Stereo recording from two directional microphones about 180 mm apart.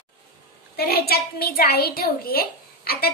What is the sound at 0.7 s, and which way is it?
A woman's voice, 60° left (ahead or behind).